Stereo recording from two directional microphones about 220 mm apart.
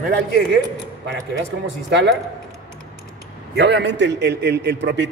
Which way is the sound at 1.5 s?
50° right (ahead or behind).